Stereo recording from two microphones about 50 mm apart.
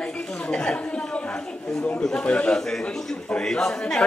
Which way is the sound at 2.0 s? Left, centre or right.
Centre.